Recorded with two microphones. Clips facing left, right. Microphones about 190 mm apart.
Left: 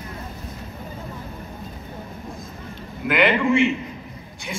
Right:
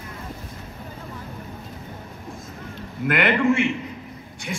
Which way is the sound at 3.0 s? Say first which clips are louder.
Even; 55° right (ahead or behind).